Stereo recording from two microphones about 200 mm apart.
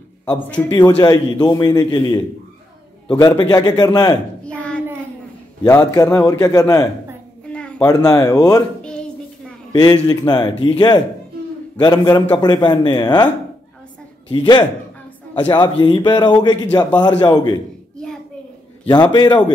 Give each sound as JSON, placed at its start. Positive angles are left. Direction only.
{"t": 0.7, "sound": "a man's voice", "side_deg": 20}
{"t": 4.5, "sound": "child singing", "side_deg": 5}
{"t": 5.9, "sound": "a man's voice", "side_deg": 15}
{"t": 7.4, "sound": "a sound", "side_deg": 5}
{"t": 7.8, "sound": "a man's voice", "side_deg": 15}
{"t": 9.7, "sound": "a man's voice", "side_deg": 20}
{"t": 14.3, "sound": "a man's voice", "side_deg": 25}
{"t": 18.9, "sound": "a man's voice", "side_deg": 20}